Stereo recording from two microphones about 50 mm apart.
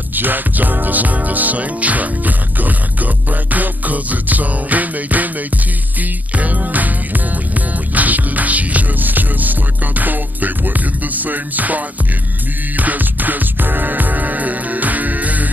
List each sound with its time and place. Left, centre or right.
0.1 s music: right